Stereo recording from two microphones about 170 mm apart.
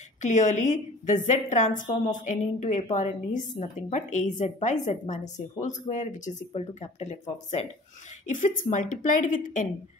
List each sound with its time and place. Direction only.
0.2 s a woman's voice: 45° left (ahead or behind)